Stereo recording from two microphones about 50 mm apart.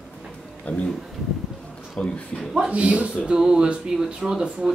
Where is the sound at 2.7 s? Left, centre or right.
Right.